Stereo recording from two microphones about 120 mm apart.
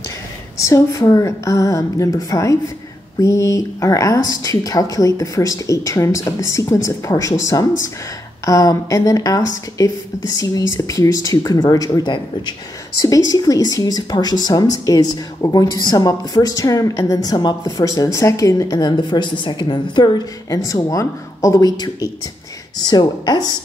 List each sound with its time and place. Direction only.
0.6 s a woman's voice: 25° left (ahead or behind)
8.5 s a woman's voice: 25° left (ahead or behind)